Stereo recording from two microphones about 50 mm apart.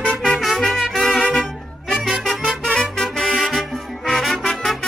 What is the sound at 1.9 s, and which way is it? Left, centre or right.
Music, centre.